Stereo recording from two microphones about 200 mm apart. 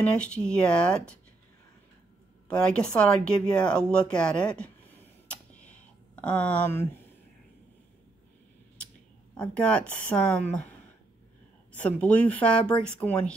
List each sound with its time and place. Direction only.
0.0 s speech: 5° left (ahead or behind)
2.5 s speech: 5° left (ahead or behind)
5.3 s a sound: 5° left (ahead or behind)
9.4 s a woman's voice: 5° left (ahead or behind)